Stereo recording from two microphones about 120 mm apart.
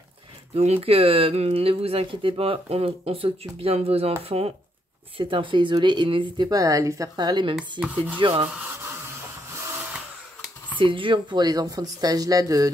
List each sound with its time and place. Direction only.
0.6 s speech: 55° right (ahead or behind)
5.1 s speech: 45° right (ahead or behind)
7.8 s rub: 10° right (ahead or behind)
8.2 s speech: 45° right (ahead or behind)
8.5 s a sound: 20° right (ahead or behind)
10.8 s speech: 45° right (ahead or behind)